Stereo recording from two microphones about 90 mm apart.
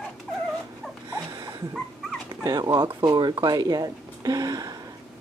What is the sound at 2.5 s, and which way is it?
Speech, 45° right (ahead or behind).